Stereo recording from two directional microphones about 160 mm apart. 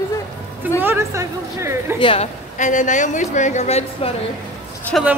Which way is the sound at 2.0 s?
30° left (ahead or behind).